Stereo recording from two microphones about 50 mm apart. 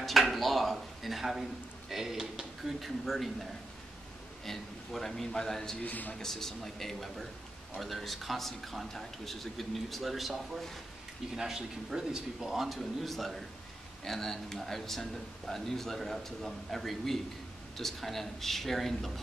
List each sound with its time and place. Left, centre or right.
0.0 s speech: centre
4.5 s a man's voice: centre
5.8 s a man's voice: left
6.1 s a man's voice: centre